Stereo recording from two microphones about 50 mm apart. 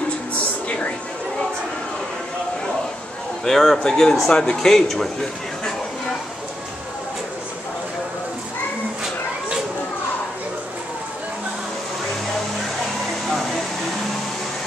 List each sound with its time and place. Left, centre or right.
0.3 s music: left
3.4 s a man's voice: centre